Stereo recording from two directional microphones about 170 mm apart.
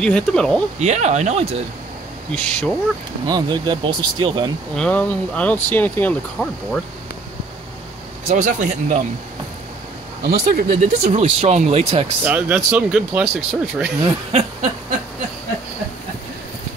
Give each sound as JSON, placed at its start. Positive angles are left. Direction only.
{"t": 0.0, "sound": "speech", "side_deg": 5}
{"t": 0.7, "sound": "speech", "side_deg": -40}
{"t": 2.3, "sound": "speech", "side_deg": 5}
{"t": 3.3, "sound": "speech", "side_deg": -25}
{"t": 4.7, "sound": "speech", "side_deg": 5}
{"t": 8.3, "sound": "speech", "side_deg": -45}
{"t": 10.2, "sound": "speech", "side_deg": -65}
{"t": 10.7, "sound": "speech", "side_deg": -45}
{"t": 12.3, "sound": "speech", "side_deg": -10}
{"t": 14.0, "sound": "speech", "side_deg": -35}